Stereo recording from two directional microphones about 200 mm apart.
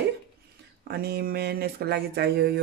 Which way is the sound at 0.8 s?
50° right (ahead or behind).